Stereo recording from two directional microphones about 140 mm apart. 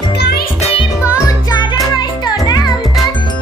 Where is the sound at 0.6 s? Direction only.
45° left (ahead or behind).